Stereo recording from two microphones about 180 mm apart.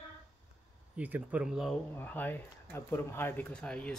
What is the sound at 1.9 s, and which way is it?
Speech, 10° left (ahead or behind).